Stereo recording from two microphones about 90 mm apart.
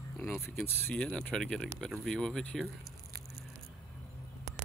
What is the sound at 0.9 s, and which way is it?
Speech, 10° left (ahead or behind).